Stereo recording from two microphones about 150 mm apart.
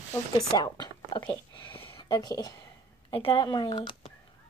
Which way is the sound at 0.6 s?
30° left (ahead or behind).